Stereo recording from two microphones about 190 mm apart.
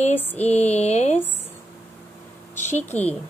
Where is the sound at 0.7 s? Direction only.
35° left (ahead or behind).